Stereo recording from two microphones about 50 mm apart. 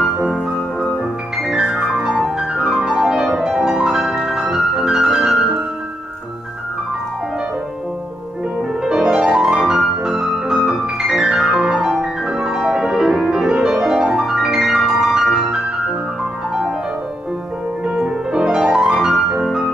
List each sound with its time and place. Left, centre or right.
1.5 s music: centre
8.8 s music: centre
17.8 s music: centre